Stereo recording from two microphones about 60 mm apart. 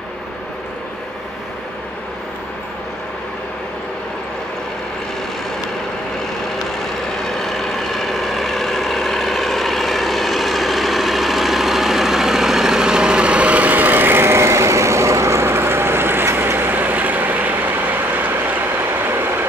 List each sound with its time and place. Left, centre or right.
6.8 s vehicle: centre; by 18.9 s right
19.0 s train: right